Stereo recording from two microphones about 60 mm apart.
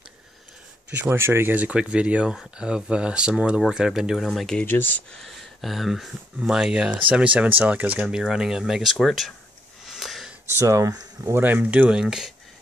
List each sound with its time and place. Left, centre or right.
1.1 s speech: right
1.5 s speech: right; by 4.6 s centre
4.6 s speech: left
5.2 s speech: centre; by 8.1 s right
8.1 s speech: centre
9.8 s wheeze: centre
10.4 s speech: right
11.3 s speech: right
11.9 s speech: centre